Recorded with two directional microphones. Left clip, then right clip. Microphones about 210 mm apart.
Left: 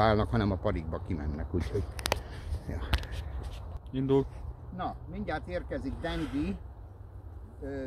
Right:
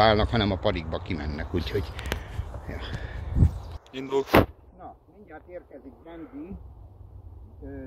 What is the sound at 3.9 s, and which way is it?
Speech, centre (ahead or behind).